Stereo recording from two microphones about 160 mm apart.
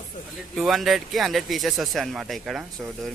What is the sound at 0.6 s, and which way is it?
Speech, centre (ahead or behind).